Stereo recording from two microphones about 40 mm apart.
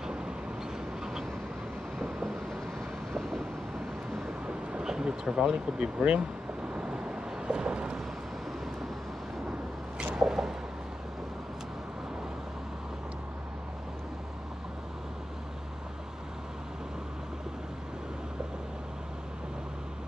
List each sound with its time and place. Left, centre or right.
4.8 s speech: centre
6.7 s vehicle: right
10.1 s a sound: centre